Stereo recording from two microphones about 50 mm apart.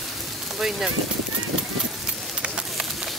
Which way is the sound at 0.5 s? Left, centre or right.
Centre.